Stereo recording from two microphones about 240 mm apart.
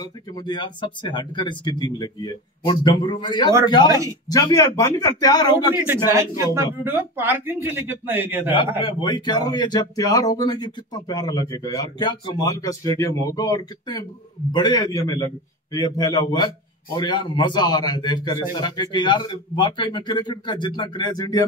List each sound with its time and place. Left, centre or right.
0.0 s a man's voice: centre
6.1 s speech: centre
8.5 s a man's voice: left